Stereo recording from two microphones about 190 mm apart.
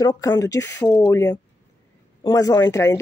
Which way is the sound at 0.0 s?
20° left (ahead or behind).